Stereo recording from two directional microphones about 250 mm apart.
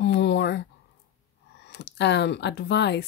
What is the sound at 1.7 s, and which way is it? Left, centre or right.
Speech, left.